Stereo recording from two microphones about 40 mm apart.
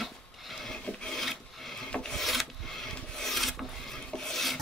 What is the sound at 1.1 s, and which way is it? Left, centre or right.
Filing, centre.